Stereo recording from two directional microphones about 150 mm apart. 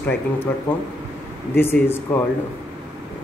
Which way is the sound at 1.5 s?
15° left (ahead or behind).